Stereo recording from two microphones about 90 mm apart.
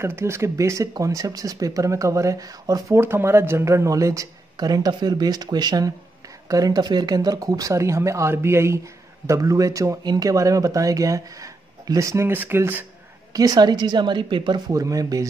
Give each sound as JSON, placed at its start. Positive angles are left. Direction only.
{"t": 0.0, "sound": "speech", "side_deg": -30}
{"t": 3.0, "sound": "speech", "side_deg": -25}
{"t": 12.3, "sound": "speech", "side_deg": -25}
{"t": 13.3, "sound": "a woman's voice", "side_deg": -45}
{"t": 14.7, "sound": "speech", "side_deg": -40}